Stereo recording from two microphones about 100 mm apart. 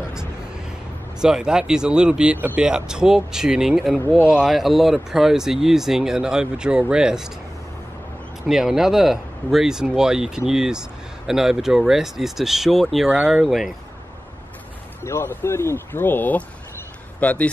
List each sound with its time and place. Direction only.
0.0 s vehicle: 5° right (ahead or behind)
1.2 s speech: 5° right (ahead or behind)
8.5 s speech: 5° right (ahead or behind)
15.0 s speech: 25° left (ahead or behind)